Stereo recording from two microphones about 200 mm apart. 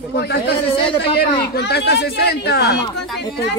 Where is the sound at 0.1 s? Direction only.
55° left (ahead or behind).